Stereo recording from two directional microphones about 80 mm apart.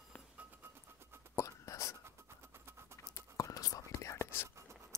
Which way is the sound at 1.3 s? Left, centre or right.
Left.